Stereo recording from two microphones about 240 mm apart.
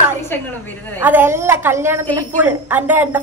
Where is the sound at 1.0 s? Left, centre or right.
Centre.